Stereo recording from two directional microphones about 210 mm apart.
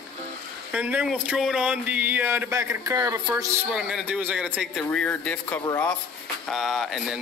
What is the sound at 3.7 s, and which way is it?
Speech, 5° right (ahead or behind).